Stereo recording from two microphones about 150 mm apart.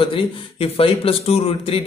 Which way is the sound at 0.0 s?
35° left (ahead or behind).